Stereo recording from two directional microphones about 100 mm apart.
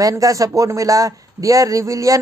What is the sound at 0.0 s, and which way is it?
Speech, 35° right (ahead or behind).